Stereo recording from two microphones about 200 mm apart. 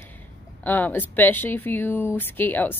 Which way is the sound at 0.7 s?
10° left (ahead or behind).